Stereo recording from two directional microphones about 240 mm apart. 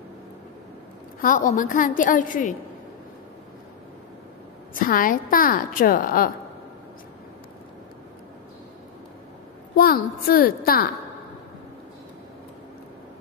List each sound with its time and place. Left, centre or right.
1.2 s a woman's voice: left
4.7 s a woman's voice: left
9.8 s a woman's voice: left